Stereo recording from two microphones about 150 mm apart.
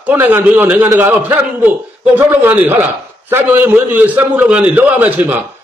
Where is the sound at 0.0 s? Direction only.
10° right (ahead or behind).